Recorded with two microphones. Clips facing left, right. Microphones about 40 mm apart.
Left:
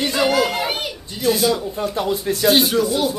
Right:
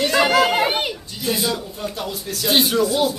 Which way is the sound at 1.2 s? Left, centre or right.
Centre.